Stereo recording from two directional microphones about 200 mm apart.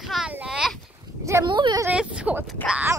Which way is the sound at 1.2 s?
20° right (ahead or behind).